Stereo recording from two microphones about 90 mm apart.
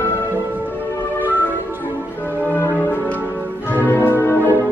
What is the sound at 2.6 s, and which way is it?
Music, 20° left (ahead or behind).